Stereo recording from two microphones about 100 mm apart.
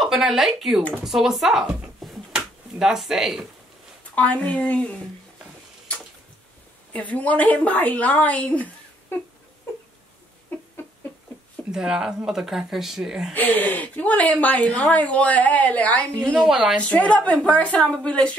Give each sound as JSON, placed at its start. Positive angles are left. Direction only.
{"t": 0.0, "sound": "speech", "side_deg": 0}
{"t": 4.0, "sound": "a woman's voice", "side_deg": 15}
{"t": 6.9, "sound": "a woman's voice", "side_deg": 15}
{"t": 11.7, "sound": "speech", "side_deg": -5}
{"t": 13.3, "sound": "a woman's voice", "side_deg": 15}
{"t": 16.3, "sound": "speech", "side_deg": -5}
{"t": 16.7, "sound": "a woman's voice", "side_deg": 10}